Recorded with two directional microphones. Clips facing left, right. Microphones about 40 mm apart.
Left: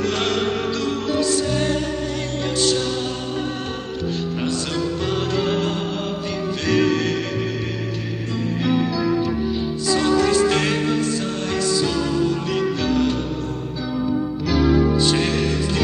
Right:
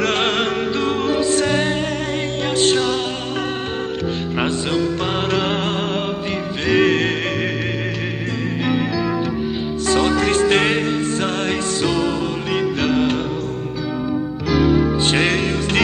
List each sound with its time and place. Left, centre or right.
0.7 s music: right
4.6 s music: right
6.8 s music: right
9.8 s music: right
15.0 s music: right